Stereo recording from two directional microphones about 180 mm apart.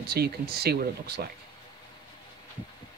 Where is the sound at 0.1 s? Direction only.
60° right (ahead or behind).